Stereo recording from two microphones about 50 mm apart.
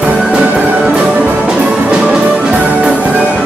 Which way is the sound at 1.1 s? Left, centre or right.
Right.